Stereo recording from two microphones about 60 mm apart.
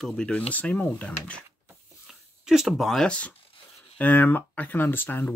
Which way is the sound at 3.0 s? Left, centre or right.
Left.